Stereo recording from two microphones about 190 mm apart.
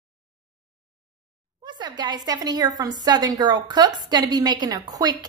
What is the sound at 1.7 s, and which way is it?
A woman's voice, 25° right (ahead or behind).